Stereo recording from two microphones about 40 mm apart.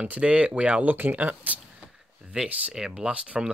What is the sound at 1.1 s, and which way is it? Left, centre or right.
Speech, right.